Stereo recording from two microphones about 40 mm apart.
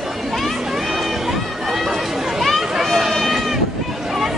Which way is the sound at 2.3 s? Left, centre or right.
Centre.